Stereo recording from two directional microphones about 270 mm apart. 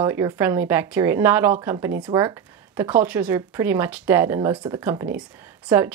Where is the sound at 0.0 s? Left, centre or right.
Centre.